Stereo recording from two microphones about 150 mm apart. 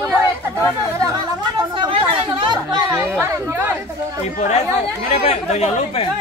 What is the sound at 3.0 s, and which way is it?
Speech, 15° right (ahead or behind).